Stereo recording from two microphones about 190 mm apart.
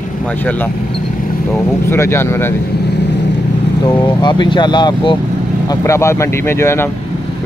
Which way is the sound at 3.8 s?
25° left (ahead or behind).